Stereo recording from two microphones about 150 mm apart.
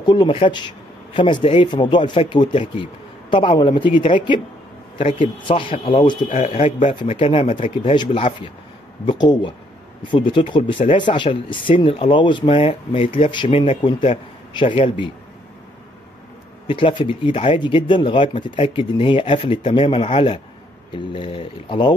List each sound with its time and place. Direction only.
0.0 s speech: 30° left (ahead or behind)
6.2 s speech: 50° left (ahead or behind)
7.1 s speech: 35° left (ahead or behind)
16.6 s speech: 35° left (ahead or behind)